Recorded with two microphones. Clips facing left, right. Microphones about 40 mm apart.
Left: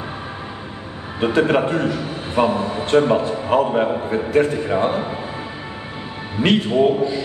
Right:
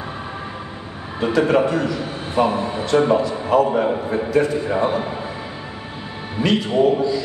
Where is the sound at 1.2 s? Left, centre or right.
Left.